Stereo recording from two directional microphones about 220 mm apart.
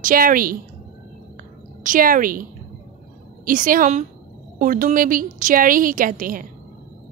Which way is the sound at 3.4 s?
40° right (ahead or behind).